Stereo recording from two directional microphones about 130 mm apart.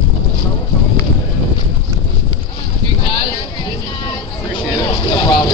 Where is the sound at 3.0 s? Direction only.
40° left (ahead or behind).